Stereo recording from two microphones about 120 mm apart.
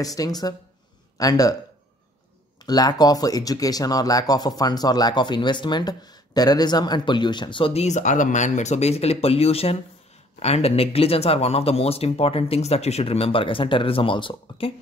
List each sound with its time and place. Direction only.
0.0 s a man's voice: 30° left (ahead or behind)
2.6 s speech: 35° left (ahead or behind)
7.8 s speech: 85° left; by 14.7 s 45° left (ahead or behind)